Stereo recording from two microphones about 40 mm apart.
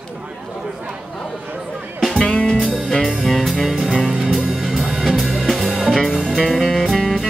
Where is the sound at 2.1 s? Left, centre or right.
Left.